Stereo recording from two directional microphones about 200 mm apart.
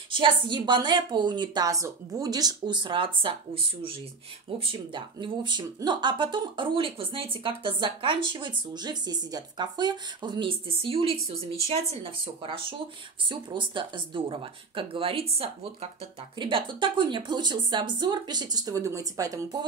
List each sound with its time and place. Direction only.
0.1 s speech: 25° right (ahead or behind)
4.6 s speech: 25° right (ahead or behind)